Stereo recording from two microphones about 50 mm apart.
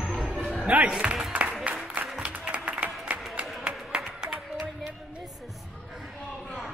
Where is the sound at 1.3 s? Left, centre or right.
Right.